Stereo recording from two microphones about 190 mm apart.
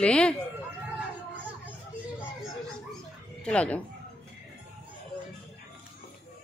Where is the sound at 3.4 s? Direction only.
5° left (ahead or behind).